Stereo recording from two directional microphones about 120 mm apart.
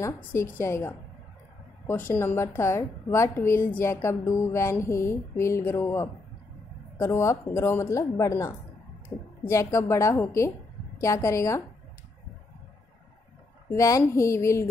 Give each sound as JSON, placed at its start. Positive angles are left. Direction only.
{"t": 0.0, "sound": "a woman's voice", "side_deg": 20}
{"t": 13.7, "sound": "a woman's voice", "side_deg": 25}